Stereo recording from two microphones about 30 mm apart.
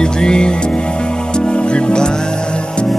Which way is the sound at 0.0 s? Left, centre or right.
Left.